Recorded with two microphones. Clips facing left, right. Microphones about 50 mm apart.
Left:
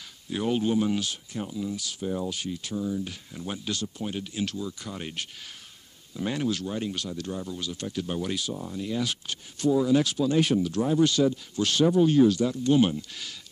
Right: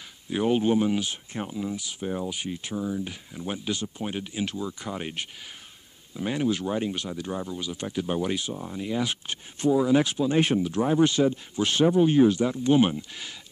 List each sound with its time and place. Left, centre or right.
0.3 s speech: right
2.7 s speech: right
3.3 s speech: centre